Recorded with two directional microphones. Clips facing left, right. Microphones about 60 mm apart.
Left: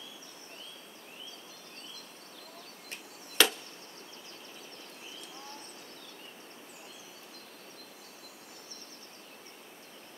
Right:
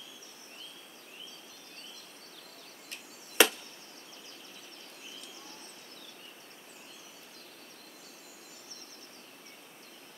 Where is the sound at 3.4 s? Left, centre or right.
Centre.